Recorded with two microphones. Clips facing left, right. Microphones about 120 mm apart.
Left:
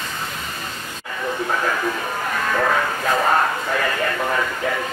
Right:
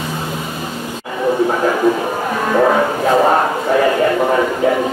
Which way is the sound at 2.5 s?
25° right (ahead or behind).